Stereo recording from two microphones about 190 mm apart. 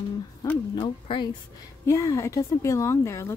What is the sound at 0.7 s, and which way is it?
Speech, 25° left (ahead or behind).